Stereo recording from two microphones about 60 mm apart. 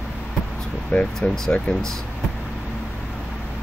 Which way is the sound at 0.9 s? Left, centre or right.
Left.